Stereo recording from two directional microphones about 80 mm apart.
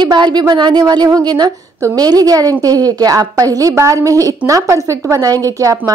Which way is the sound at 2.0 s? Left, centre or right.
Right.